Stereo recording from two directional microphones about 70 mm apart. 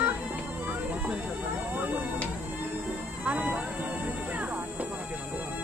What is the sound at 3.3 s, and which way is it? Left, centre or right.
Music, right.